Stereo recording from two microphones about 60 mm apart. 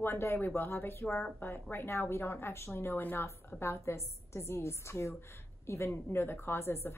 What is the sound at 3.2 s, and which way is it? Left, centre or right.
A woman's voice, left.